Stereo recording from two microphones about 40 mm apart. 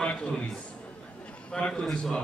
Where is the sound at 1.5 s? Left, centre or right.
Left.